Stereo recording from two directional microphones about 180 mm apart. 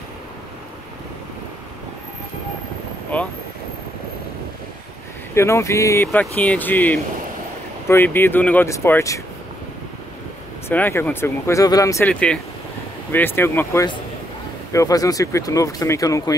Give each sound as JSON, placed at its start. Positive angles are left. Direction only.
{"t": 3.1, "sound": "vehicle", "side_deg": 5}
{"t": 5.3, "sound": "speech", "side_deg": 15}
{"t": 10.7, "sound": "speech", "side_deg": 10}